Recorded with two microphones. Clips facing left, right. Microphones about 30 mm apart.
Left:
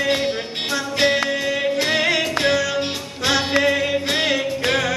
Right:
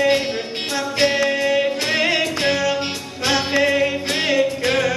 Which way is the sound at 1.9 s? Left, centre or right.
Centre.